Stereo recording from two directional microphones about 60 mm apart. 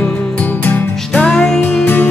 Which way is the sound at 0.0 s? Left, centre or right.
Left.